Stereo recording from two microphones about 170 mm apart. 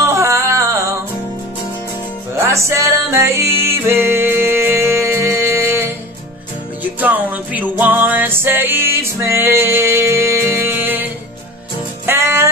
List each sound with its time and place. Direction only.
0.0 s music: 15° right (ahead or behind)
2.3 s music: 15° right (ahead or behind)
12.1 s music: 15° right (ahead or behind)